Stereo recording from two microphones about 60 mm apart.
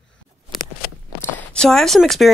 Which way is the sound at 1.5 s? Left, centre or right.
Centre.